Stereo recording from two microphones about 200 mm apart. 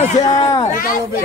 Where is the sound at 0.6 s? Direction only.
45° left (ahead or behind).